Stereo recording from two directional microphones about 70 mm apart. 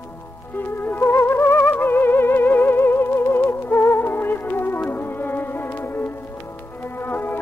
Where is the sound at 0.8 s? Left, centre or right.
Left.